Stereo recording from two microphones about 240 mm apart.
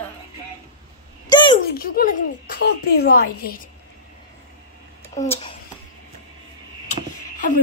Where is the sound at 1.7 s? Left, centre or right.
Left.